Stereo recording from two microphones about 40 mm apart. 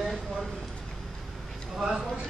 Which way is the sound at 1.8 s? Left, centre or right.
Centre.